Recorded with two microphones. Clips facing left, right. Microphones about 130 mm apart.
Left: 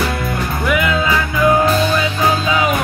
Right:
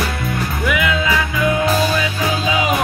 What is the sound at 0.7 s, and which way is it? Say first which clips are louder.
Music: left 2 dB; 40° left (ahead or behind).